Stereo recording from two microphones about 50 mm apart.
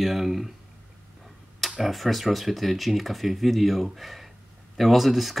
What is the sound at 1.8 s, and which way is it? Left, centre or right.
Speech, centre.